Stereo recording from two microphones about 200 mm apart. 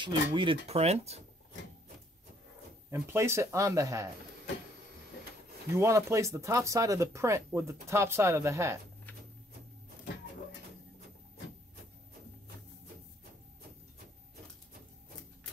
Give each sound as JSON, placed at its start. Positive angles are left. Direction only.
{"t": 0.0, "sound": "speech", "side_deg": -25}
{"t": 2.9, "sound": "speech", "side_deg": -15}
{"t": 5.7, "sound": "speech", "side_deg": -15}